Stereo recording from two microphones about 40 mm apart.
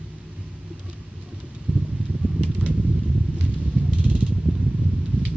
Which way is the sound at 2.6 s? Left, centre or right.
Centre.